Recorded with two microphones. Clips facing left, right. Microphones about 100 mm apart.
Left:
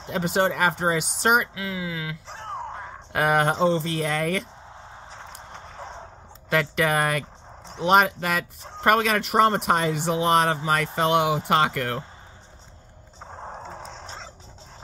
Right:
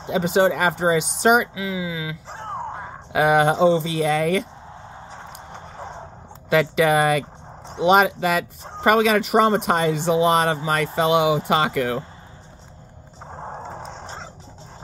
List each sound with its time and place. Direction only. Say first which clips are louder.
0.0 s speech: right 5 dB; centre (ahead or behind)
2.5 s a sound: right 3 dB; 25° right (ahead or behind)
2.8 s speech: right 5 dB; 5° right (ahead or behind)
5.5 s clip-clop: right 3 dB; 5° right (ahead or behind)
6.5 s speech: right 5 dB; 5° right (ahead or behind)
13.3 s a sound: right 4 dB; 5° right (ahead or behind)